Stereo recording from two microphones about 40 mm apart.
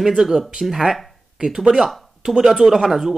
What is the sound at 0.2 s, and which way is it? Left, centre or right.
Speech, centre.